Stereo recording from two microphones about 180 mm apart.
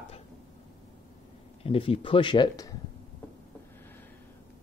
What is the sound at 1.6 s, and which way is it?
Speech, 30° left (ahead or behind).